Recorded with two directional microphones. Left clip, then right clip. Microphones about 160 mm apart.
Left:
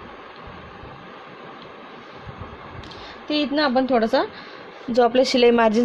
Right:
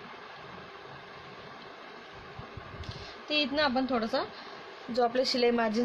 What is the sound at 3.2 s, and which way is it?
Speech, 35° left (ahead or behind).